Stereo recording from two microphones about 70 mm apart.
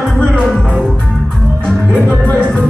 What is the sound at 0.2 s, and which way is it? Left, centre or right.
Music, centre.